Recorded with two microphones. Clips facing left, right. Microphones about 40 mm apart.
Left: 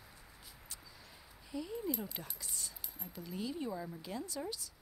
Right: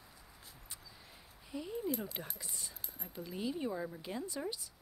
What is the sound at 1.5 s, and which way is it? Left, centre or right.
Speech, centre.